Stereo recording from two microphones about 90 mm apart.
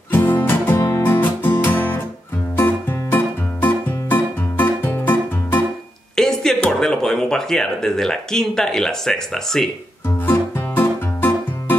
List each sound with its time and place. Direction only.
0.1 s music: 20° left (ahead or behind)
6.1 s a sound: 5° left (ahead or behind)
6.7 s speech: 5° left (ahead or behind)
10.2 s music: 20° left (ahead or behind)